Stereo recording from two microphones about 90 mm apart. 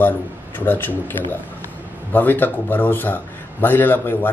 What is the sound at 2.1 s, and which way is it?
A man's voice, 20° left (ahead or behind).